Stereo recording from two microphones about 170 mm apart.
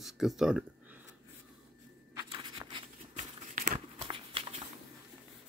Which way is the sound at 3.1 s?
45° right (ahead or behind).